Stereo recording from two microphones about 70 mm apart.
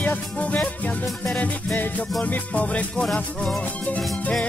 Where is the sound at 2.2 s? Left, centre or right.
Centre.